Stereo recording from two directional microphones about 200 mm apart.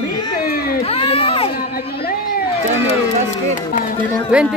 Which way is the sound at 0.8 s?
30° left (ahead or behind).